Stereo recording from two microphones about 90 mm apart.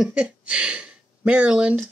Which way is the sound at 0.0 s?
10° right (ahead or behind).